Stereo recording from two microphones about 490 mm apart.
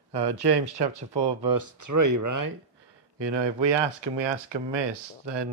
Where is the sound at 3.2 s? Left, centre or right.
Right.